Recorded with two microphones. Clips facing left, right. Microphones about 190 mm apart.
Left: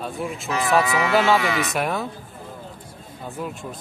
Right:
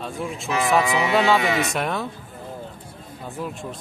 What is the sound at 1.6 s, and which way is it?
Speech, centre (ahead or behind).